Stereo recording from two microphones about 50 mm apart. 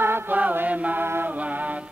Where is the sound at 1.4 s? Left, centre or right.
Right.